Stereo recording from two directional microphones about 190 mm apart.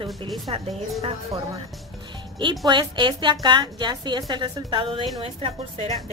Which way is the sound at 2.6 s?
25° right (ahead or behind).